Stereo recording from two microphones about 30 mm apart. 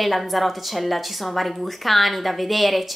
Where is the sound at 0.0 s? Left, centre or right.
Centre.